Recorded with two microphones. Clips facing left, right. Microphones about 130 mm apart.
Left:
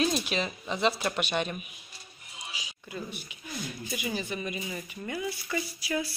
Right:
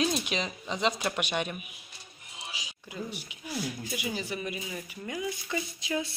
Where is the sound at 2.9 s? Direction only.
15° right (ahead or behind).